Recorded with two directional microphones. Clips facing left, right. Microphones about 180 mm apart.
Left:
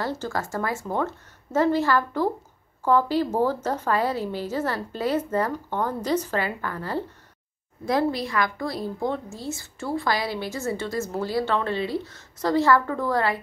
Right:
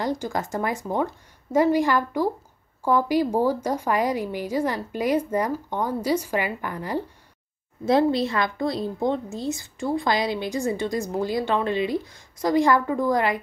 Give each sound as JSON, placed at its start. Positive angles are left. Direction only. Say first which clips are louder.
{"t": 0.0, "sound": "a woman's voice", "louder": "right 2 dB", "side_deg": -15}